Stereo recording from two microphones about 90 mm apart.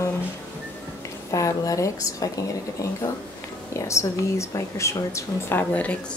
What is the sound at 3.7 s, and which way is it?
A woman's voice, 35° left (ahead or behind).